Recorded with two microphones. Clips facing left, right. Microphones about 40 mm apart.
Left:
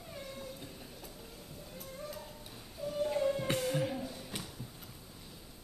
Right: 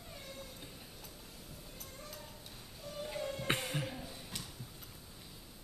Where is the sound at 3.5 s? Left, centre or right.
Right.